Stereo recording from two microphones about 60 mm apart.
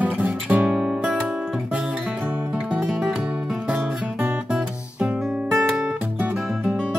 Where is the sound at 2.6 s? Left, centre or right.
Centre.